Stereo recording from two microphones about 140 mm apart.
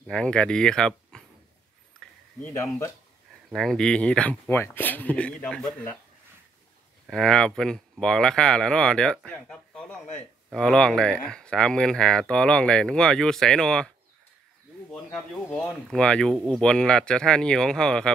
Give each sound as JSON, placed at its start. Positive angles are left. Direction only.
{"t": 0.0, "sound": "speech", "side_deg": 5}
{"t": 2.5, "sound": "speech", "side_deg": 20}
{"t": 3.5, "sound": "speech", "side_deg": 5}
{"t": 7.1, "sound": "speech", "side_deg": 5}
{"t": 15.1, "sound": "speech", "side_deg": 5}